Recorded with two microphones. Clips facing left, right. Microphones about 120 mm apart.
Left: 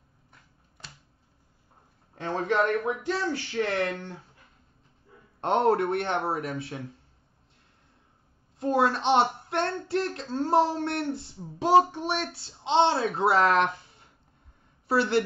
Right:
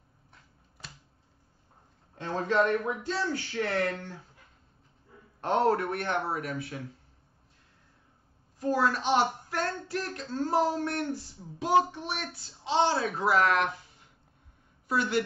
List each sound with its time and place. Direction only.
0.3 s a sound: centre (ahead or behind)
2.2 s speech: 20° left (ahead or behind)
5.4 s speech: 25° left (ahead or behind)
8.5 s speech: 25° left (ahead or behind)